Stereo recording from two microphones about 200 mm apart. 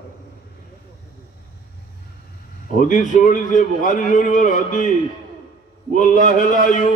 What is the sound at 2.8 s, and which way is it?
A man's voice, 40° left (ahead or behind).